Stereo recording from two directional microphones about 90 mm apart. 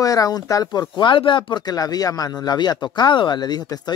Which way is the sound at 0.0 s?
40° left (ahead or behind).